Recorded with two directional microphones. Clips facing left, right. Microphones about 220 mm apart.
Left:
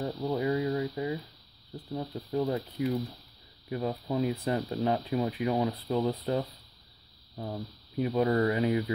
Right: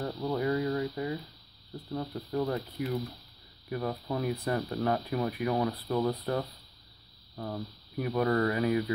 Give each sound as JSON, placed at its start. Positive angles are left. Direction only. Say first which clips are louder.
{"t": 0.0, "sound": "speech", "louder": "left 1 dB", "side_deg": 15}